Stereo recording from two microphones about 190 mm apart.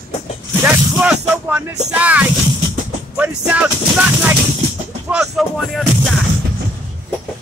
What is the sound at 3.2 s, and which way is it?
Music, 5° right (ahead or behind).